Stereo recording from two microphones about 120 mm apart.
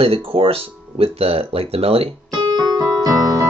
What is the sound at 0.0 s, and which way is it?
Speech, 50° right (ahead or behind).